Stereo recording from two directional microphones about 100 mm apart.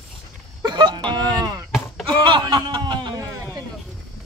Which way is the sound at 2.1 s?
55° right (ahead or behind).